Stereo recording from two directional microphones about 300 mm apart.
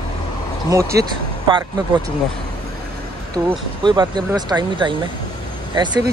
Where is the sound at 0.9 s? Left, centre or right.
Centre.